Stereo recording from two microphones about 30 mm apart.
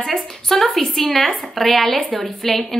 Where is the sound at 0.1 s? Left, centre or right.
Centre.